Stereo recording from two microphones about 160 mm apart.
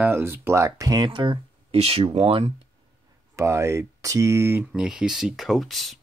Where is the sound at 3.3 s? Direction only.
15° right (ahead or behind).